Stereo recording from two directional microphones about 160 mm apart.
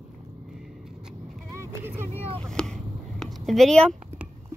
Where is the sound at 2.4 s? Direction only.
5° left (ahead or behind).